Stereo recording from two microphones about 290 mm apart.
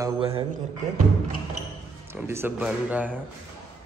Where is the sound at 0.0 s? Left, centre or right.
Centre.